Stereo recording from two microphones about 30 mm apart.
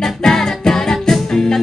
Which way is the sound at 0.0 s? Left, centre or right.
Centre.